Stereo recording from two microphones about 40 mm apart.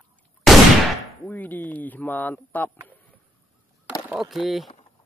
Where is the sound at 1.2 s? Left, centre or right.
Left.